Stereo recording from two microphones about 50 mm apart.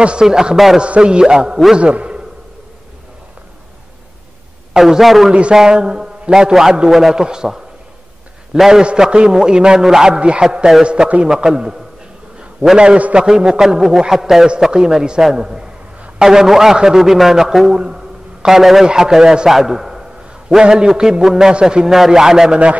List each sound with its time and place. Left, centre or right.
0.0 s a man's voice: centre
0.7 s a man's voice: right
4.7 s a man's voice: centre; by 11.2 s right
11.2 s a man's voice: centre
12.7 s a man's voice: right; by 17.7 s centre
17.7 s a sound: centre
18.9 s a man's voice: centre
21.8 s a man's voice: centre